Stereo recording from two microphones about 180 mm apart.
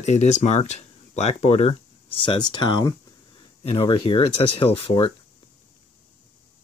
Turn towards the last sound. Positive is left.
turn(degrees=30)  # may be behind; listen again after turning